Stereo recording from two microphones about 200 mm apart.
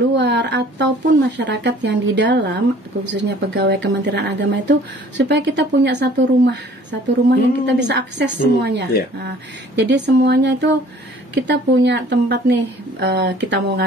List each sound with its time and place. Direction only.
0.1 s speech: 60° right (ahead or behind)